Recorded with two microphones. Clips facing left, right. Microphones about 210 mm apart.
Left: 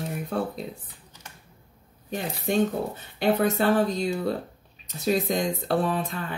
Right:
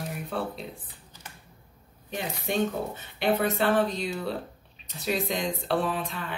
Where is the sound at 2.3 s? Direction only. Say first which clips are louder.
Left 4 dB; 40° left (ahead or behind).